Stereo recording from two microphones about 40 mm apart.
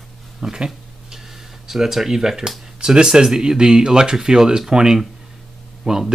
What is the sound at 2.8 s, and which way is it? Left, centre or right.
Speech, centre.